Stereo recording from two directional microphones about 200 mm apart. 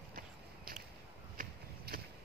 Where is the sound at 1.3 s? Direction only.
50° right (ahead or behind).